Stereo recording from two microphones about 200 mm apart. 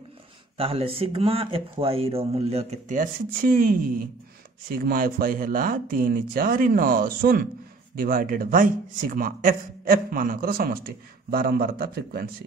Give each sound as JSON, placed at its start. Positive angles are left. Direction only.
{"t": 0.6, "sound": "speech", "side_deg": -30}